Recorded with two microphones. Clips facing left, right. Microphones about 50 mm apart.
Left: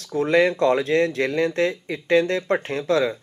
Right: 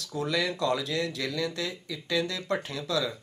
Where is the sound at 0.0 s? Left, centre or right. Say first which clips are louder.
Left 11 dB; left.